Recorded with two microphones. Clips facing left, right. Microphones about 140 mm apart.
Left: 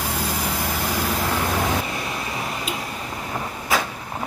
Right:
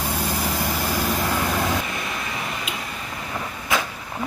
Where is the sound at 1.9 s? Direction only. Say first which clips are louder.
Left 1 dB; 30° left (ahead or behind).